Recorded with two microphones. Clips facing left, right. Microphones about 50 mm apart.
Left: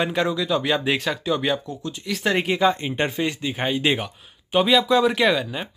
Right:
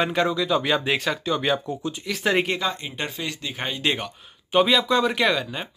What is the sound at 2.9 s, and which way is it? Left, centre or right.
Speech, left.